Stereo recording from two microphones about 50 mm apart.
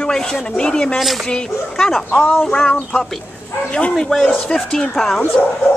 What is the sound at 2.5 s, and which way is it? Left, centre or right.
Speech, centre.